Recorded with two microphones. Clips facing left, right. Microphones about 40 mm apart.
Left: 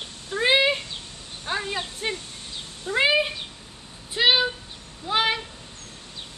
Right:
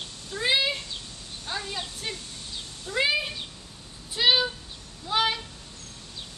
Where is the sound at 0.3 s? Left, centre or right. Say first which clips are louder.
Left 5 dB; left.